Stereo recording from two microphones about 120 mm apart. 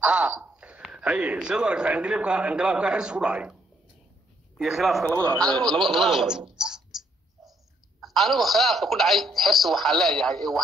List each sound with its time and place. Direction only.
0.0 s speech: 10° right (ahead or behind)
4.6 s speech: centre (ahead or behind)
5.2 s speech: 25° right (ahead or behind)
5.7 s speech: centre (ahead or behind)
6.5 s a sound: 5° right (ahead or behind)
8.0 s speech: centre (ahead or behind)